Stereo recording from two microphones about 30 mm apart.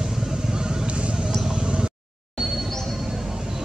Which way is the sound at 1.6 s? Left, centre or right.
Right.